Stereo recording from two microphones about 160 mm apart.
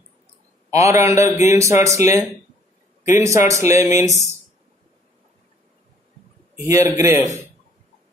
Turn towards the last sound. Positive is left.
turn(degrees=-20)  # may be behind; listen again after turning